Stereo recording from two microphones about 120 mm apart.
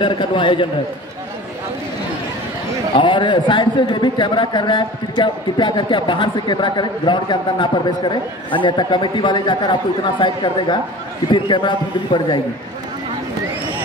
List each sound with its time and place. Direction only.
0.0 s a man's voice: 40° left (ahead or behind)
3.0 s a man's voice: 40° left (ahead or behind)